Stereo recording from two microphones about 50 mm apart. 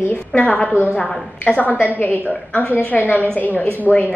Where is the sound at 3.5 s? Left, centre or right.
Left.